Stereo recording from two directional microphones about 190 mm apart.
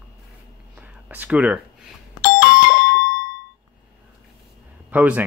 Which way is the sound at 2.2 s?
50° left (ahead or behind).